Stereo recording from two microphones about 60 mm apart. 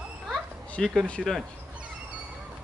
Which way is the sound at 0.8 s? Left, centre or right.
Centre.